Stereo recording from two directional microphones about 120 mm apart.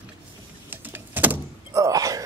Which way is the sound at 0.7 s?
15° right (ahead or behind).